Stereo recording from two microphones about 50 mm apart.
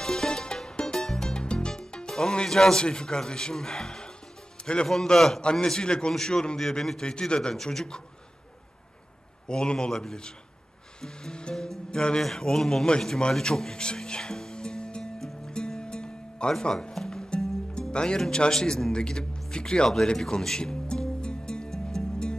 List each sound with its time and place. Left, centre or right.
0.0 s music: centre
5.0 s speech: centre
9.5 s speech: centre
11.0 s music: centre
12.2 s a man's voice: centre
15.1 s music: centre
18.2 s speech: centre
20.2 s music: centre